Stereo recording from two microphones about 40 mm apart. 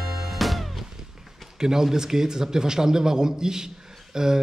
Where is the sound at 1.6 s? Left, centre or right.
Centre.